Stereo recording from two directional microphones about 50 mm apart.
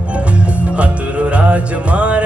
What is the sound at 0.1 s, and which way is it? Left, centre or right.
Music, right.